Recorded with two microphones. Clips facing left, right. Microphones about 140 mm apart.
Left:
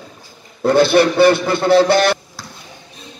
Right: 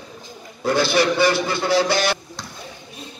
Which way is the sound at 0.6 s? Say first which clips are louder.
Left 7 dB; 55° left (ahead or behind).